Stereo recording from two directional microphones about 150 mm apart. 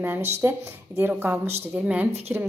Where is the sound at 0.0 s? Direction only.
15° right (ahead or behind).